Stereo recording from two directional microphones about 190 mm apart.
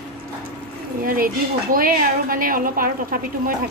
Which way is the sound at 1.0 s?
50° right (ahead or behind).